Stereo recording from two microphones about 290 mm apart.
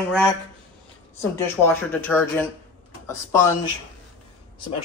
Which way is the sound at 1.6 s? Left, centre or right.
Centre.